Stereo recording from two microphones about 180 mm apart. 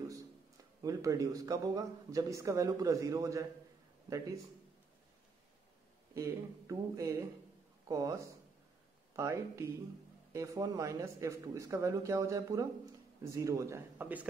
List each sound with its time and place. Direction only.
0.8 s speech: 20° right (ahead or behind)
6.1 s speech: 15° right (ahead or behind)